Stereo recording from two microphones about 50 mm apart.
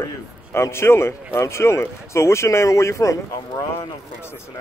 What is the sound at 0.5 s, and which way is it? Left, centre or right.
Speech, left.